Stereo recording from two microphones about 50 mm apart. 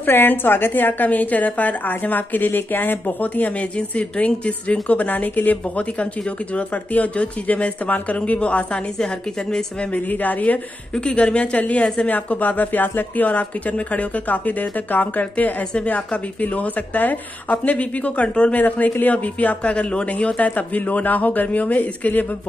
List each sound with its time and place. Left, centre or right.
0.0 s a woman's voice: left
8.9 s a woman's voice: centre
9.9 s a woman's voice: left
11.0 s a woman's voice: left
15.7 s a woman's voice: left